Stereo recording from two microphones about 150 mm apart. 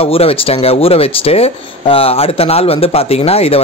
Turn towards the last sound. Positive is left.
turn(degrees=40)  # may be behind; listen again after turning